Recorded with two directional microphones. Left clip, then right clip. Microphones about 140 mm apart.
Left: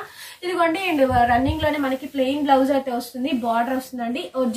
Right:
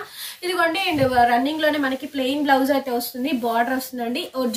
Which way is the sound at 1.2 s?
5° left (ahead or behind).